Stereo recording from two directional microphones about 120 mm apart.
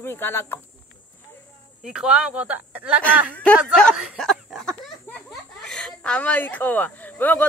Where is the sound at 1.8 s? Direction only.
5° right (ahead or behind).